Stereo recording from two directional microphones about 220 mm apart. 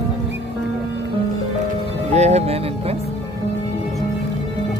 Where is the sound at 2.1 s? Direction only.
30° right (ahead or behind).